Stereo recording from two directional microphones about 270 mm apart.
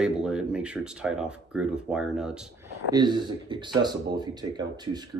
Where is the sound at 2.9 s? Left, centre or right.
Centre.